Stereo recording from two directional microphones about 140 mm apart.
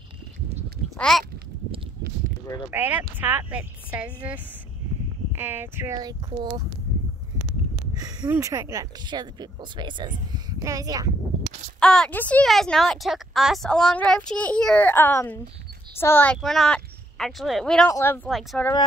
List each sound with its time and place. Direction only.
0.8 s a sound: 5° left (ahead or behind)
2.7 s speech: 15° right (ahead or behind); by 6.6 s 30° right (ahead or behind)
7.9 s a sound: 30° right (ahead or behind)
8.3 s speech: 25° right (ahead or behind)
10.6 s speech: 25° right (ahead or behind)
11.8 s speech: 5° left (ahead or behind)
16.3 s speech: centre (ahead or behind)
17.8 s speech: 20° left (ahead or behind)